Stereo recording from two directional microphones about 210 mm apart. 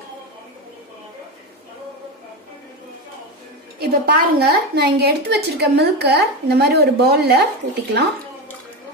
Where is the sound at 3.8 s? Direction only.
50° right (ahead or behind).